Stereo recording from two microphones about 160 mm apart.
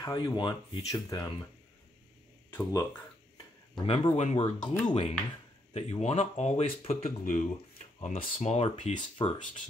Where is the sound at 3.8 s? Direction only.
35° left (ahead or behind).